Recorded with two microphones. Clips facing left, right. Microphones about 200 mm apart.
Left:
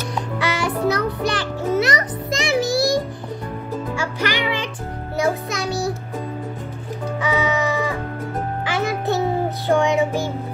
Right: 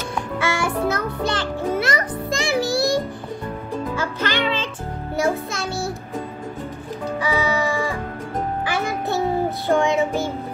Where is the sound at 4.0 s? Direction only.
15° left (ahead or behind).